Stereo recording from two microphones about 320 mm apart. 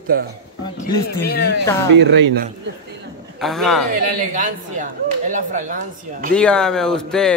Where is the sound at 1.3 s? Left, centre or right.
Left.